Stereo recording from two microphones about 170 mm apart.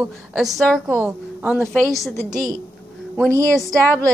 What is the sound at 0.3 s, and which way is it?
Speech, centre (ahead or behind).